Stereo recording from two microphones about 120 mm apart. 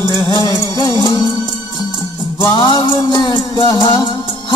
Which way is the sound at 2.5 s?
40° left (ahead or behind).